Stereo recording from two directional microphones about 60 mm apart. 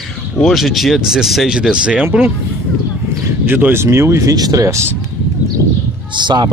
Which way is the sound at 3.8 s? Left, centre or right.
Right.